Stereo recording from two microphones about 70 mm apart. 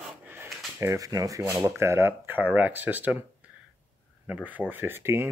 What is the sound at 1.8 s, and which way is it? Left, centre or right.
Speech, right.